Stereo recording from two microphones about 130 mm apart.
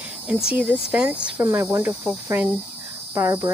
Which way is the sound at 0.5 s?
10° right (ahead or behind).